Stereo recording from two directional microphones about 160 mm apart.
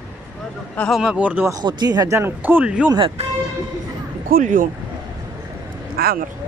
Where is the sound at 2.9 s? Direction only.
35° right (ahead or behind).